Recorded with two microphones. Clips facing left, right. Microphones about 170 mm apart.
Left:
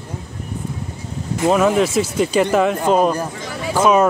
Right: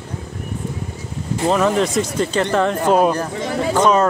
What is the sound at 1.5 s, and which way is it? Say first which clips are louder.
Speech: left 2 dB; 5° left (ahead or behind).